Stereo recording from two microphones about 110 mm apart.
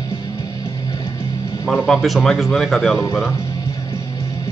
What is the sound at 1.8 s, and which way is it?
Speech, centre (ahead or behind).